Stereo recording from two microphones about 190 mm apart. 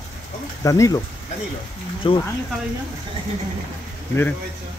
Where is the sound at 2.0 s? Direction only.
25° left (ahead or behind).